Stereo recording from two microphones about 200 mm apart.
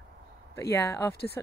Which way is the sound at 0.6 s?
15° left (ahead or behind).